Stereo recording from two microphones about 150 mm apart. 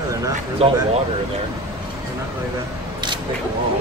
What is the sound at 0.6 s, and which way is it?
Speech, 40° right (ahead or behind).